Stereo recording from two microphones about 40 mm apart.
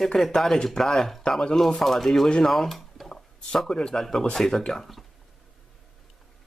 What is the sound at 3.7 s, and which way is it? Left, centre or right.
Speech, centre.